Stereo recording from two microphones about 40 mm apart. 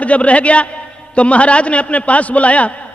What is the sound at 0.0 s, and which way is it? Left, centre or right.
A man's voice, left.